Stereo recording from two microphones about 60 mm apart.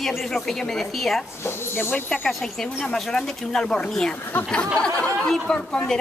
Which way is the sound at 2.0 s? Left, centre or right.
Centre.